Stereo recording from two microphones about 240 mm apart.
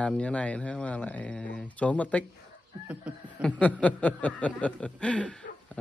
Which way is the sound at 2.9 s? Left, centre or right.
Centre.